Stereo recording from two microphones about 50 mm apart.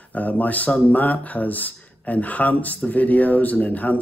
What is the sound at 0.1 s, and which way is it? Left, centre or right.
Speech, left.